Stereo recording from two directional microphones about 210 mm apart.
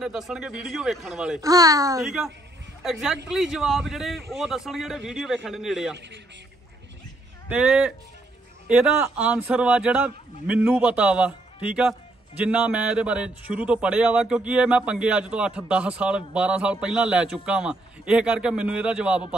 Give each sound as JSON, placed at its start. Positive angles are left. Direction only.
{"t": 0.0, "sound": "a man's voice", "side_deg": -5}
{"t": 1.4, "sound": "speech", "side_deg": -15}
{"t": 2.0, "sound": "a man's voice", "side_deg": 0}
{"t": 7.4, "sound": "a man's voice", "side_deg": -5}